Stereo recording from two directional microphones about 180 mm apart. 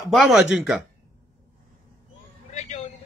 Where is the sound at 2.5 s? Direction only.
40° left (ahead or behind).